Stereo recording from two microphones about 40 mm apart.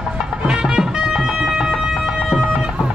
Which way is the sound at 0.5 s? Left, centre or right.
Centre.